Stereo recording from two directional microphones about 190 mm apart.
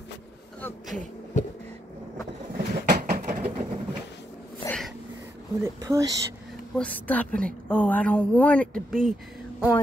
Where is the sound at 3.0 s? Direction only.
45° right (ahead or behind).